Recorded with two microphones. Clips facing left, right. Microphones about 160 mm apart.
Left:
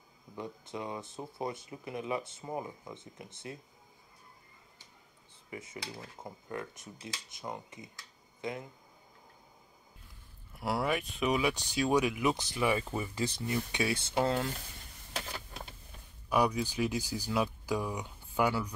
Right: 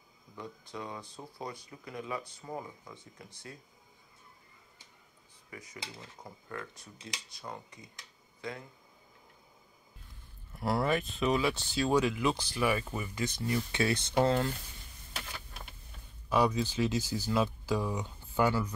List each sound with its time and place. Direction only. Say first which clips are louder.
0.4 s speech: left 3 dB; 20° left (ahead or behind)
5.5 s speech: left 3 dB; 25° left (ahead or behind)
10.5 s speech: right 2 dB; 10° left (ahead or behind); by 13.6 s 30° left (ahead or behind)
13.7 s speech: right 2 dB; 10° left (ahead or behind)
16.3 s speech: right 1 dB; 15° left (ahead or behind)